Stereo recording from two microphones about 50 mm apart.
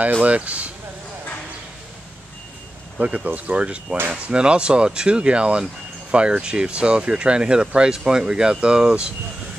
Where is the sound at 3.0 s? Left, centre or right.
Right.